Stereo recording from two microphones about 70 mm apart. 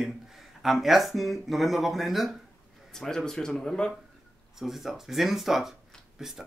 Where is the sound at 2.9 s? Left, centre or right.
Centre.